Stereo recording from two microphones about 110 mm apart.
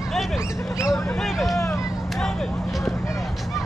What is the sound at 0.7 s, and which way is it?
Speech, 30° left (ahead or behind).